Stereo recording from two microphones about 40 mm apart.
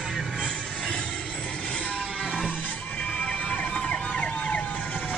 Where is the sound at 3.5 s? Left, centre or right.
Left.